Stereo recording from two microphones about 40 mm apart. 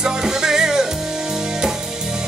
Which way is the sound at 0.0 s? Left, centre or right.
Centre.